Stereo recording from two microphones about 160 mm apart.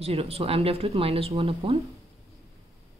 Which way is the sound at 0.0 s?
40° right (ahead or behind).